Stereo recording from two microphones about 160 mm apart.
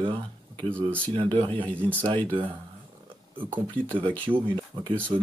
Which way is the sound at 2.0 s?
10° left (ahead or behind).